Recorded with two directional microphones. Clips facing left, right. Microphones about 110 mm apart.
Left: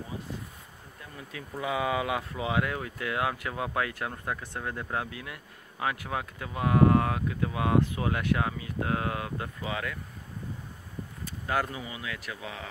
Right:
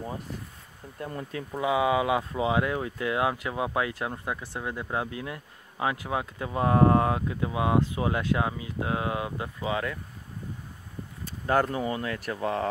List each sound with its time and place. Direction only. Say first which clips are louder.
0.9 s speech: right 11 dB; 55° right (ahead or behind)
1.5 s speech: right 5 dB; 20° right (ahead or behind)
11.4 s speech: right 6 dB; 35° right (ahead or behind)